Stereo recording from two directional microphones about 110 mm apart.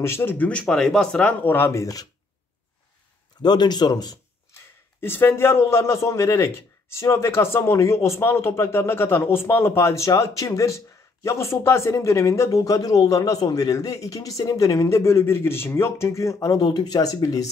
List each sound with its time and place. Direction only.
0.0 s speech: 20° left (ahead or behind)
1.4 s speech: 20° left (ahead or behind)
3.4 s speech: 40° left (ahead or behind)
5.0 s speech: 20° left (ahead or behind)